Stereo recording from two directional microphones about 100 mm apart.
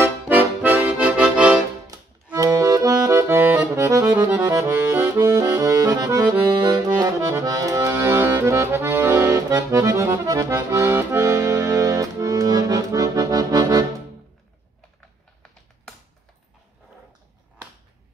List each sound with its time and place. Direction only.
0.0 s accordion: 20° right (ahead or behind)
2.3 s accordion: 35° right (ahead or behind)
4.6 s accordion: 30° right (ahead or behind)
8.0 s accordion: 25° right (ahead or behind)
11.2 s accordion: 35° right (ahead or behind)